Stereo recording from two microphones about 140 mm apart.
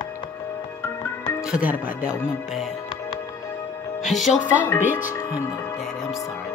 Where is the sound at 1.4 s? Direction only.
10° right (ahead or behind).